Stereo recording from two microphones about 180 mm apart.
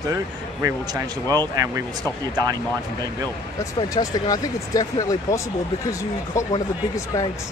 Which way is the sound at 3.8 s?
20° left (ahead or behind).